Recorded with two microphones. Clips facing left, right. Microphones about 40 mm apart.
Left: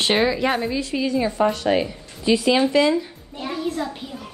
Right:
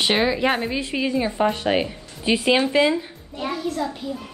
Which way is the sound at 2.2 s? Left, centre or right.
Right.